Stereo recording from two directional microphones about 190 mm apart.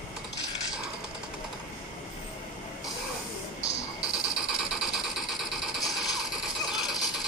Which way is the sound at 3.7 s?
30° right (ahead or behind).